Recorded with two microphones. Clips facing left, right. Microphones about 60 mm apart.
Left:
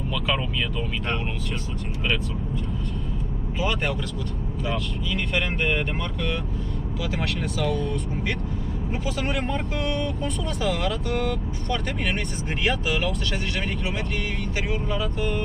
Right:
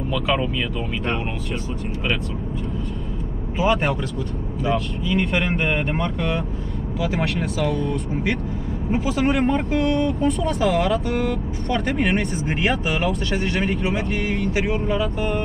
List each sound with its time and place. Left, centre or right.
0.1 s speech: centre
5.1 s speech: centre
8.9 s speech: centre